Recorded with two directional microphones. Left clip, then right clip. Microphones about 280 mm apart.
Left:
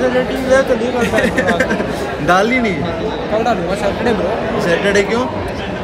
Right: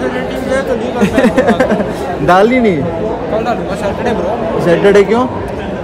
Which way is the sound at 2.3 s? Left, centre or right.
Right.